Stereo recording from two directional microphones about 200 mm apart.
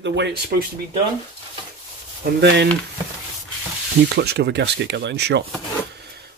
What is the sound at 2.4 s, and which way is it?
Speech, 60° right (ahead or behind).